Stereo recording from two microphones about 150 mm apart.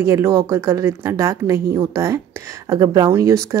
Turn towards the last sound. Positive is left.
turn(degrees=-20)  # may be behind; listen again after turning